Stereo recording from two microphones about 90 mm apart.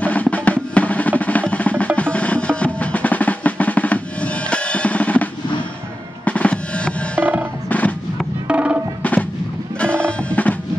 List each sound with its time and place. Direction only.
0.0 s percussion: 15° left (ahead or behind)
6.2 s drum: 15° left (ahead or behind)
7.2 s music: 15° right (ahead or behind)
8.5 s music: 15° right (ahead or behind)
9.0 s artillery fire: 15° left (ahead or behind)
9.8 s music: 10° left (ahead or behind)